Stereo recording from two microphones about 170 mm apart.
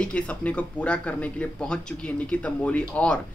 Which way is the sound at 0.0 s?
5° left (ahead or behind).